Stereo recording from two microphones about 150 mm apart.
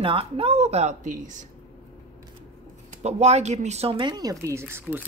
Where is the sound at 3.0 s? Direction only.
45° right (ahead or behind); by 5.0 s 15° right (ahead or behind).